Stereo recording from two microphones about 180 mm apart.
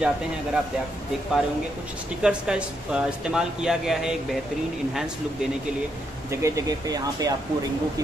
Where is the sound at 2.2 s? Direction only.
5° right (ahead or behind).